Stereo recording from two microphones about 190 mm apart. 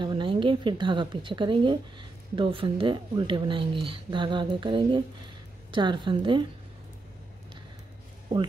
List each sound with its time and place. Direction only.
0.0 s a woman's voice: 25° right (ahead or behind)